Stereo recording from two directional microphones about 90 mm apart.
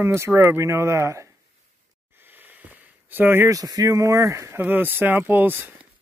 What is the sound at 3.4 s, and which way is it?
Speech, 40° right (ahead or behind).